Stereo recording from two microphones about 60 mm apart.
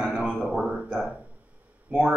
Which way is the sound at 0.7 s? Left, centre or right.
Centre.